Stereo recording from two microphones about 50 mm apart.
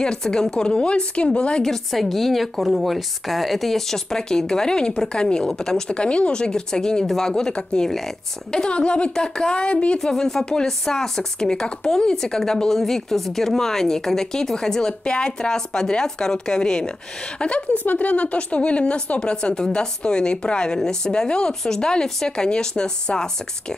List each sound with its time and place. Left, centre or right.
0.0 s speech: centre
1.6 s a woman's voice: centre; by 9.9 s left
9.9 s a woman's voice: centre